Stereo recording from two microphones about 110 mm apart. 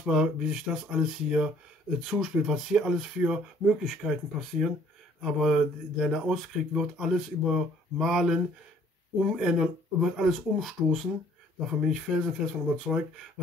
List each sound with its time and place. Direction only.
0.0 s speech: 5° right (ahead or behind)